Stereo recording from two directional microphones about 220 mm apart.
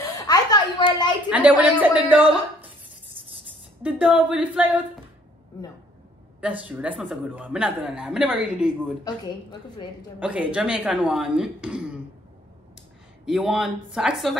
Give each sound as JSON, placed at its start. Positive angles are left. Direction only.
{"t": 0.0, "sound": "a sound", "side_deg": 15}
{"t": 1.3, "sound": "speech", "side_deg": -5}
{"t": 3.8, "sound": "speech", "side_deg": -5}
{"t": 6.7, "sound": "a woman's voice", "side_deg": -5}
{"t": 9.0, "sound": "a woman's voice", "side_deg": 20}
{"t": 10.1, "sound": "a woman's voice", "side_deg": -5}
{"t": 13.2, "sound": "a woman's voice", "side_deg": 0}